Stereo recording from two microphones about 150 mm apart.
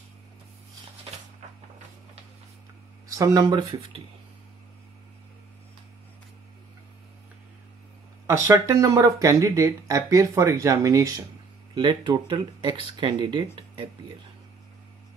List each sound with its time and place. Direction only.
3.1 s speech: 20° right (ahead or behind)
8.3 s speech: 20° right (ahead or behind)